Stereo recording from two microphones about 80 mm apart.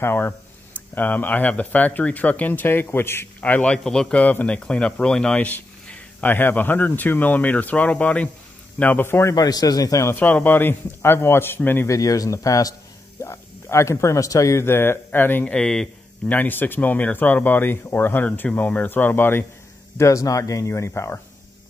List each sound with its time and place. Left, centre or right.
0.0 s speech: left
3.3 s speech: centre
4.2 s speech: centre
9.3 s speech: left
9.9 s speech: left
10.2 s speech: left
11.9 s speech: left
15.5 s speech: centre
16.3 s speech: left
20.0 s speech: left